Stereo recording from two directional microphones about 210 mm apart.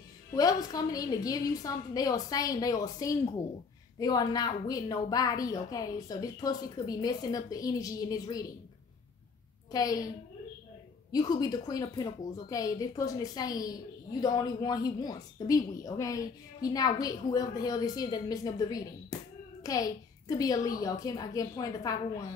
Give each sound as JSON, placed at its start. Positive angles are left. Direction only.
{"t": 0.3, "sound": "a woman's voice", "side_deg": 15}
{"t": 9.7, "sound": "a woman's voice", "side_deg": 15}
{"t": 11.1, "sound": "a woman's voice", "side_deg": 20}